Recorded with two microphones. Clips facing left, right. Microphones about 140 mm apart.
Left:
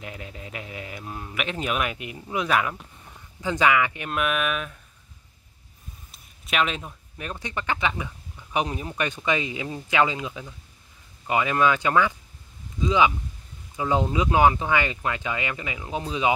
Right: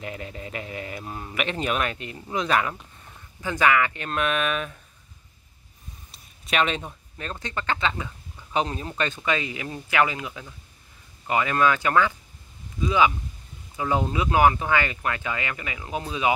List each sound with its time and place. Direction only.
0.0 s speech: centre (ahead or behind)
6.4 s speech: 5° left (ahead or behind); by 16.3 s 20° left (ahead or behind)